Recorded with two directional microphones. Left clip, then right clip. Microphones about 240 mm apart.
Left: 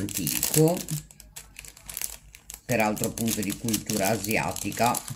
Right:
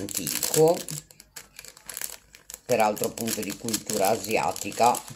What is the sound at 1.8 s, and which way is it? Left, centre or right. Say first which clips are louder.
Crumpling: even; right.